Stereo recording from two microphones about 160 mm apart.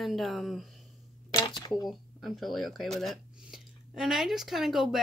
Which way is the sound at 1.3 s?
25° left (ahead or behind).